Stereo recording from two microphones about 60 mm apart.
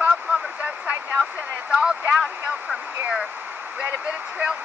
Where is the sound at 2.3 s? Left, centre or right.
Right.